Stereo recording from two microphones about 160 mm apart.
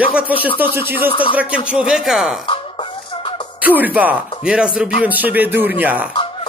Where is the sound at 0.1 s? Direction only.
10° right (ahead or behind).